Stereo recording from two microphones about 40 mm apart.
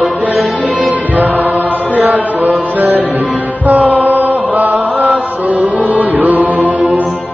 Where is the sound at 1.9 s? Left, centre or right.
Right.